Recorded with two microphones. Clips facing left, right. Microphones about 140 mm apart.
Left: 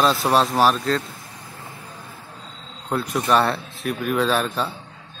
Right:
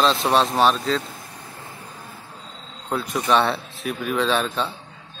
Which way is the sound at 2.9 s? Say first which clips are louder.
Left 1 dB; centre (ahead or behind).